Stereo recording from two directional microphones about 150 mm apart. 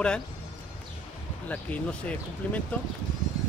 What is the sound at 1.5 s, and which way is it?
Speech, 10° left (ahead or behind).